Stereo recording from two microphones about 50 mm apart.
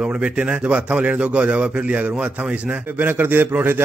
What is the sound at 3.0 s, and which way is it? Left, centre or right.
Speech, right.